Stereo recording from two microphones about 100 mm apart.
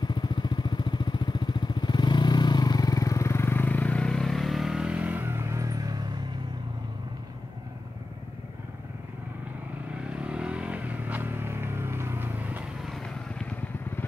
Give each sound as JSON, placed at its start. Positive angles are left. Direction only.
{"t": 0.0, "sound": "vehicle", "side_deg": 50}
{"t": 10.1, "sound": "vehicle", "side_deg": -10}
{"t": 12.8, "sound": "vehicle", "side_deg": 5}